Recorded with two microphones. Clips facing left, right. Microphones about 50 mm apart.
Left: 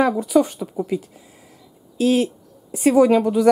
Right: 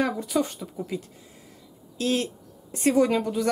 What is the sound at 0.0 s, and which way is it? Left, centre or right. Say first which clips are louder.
Speech: left 8 dB; centre.